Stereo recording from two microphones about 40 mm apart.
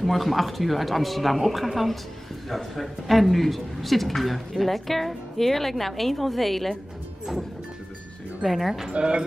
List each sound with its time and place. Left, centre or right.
0.0 s speech: centre
8.5 s speech: centre
8.9 s speech: right